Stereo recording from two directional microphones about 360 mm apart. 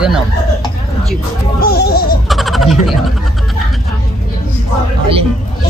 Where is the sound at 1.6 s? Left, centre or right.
Left.